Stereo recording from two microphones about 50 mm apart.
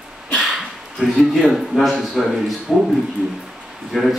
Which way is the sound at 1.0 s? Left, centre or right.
Centre.